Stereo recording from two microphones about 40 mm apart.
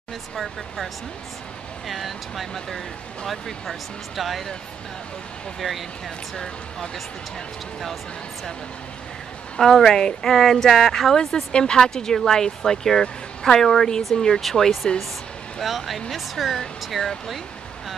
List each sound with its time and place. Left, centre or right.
1.9 s speech: centre
5.6 s speech: centre
6.3 s speech: centre
9.6 s speech: centre
11.5 s speech: left
15.6 s speech: centre
17.0 s speech: centre